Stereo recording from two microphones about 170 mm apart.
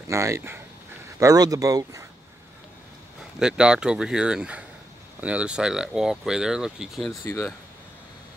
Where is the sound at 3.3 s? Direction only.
5° right (ahead or behind).